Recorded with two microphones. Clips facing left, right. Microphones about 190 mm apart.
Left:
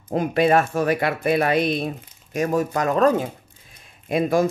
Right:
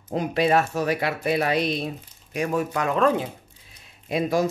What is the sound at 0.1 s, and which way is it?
Speech, 50° left (ahead or behind).